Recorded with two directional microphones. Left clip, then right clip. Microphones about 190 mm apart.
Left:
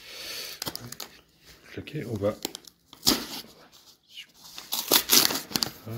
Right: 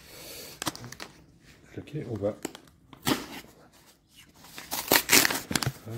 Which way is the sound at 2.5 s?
15° right (ahead or behind).